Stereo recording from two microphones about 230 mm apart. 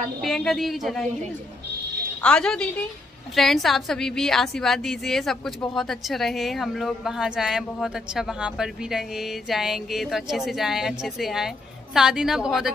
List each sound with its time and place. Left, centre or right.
0.2 s speech: centre
2.2 s speech: centre